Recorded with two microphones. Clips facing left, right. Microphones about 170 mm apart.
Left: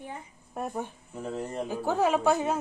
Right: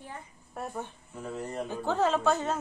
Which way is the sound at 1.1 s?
30° left (ahead or behind).